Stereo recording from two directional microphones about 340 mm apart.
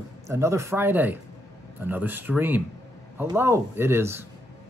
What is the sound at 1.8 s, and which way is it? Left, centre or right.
Speech, centre.